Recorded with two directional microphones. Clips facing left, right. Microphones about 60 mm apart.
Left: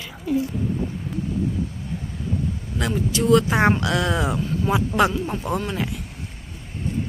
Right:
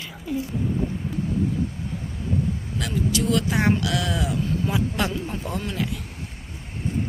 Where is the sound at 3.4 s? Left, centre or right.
Left.